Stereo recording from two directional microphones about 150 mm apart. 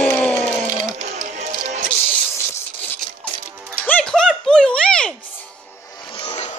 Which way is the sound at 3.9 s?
5° left (ahead or behind).